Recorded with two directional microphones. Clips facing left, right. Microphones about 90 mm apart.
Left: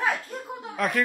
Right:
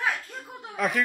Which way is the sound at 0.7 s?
Centre (ahead or behind).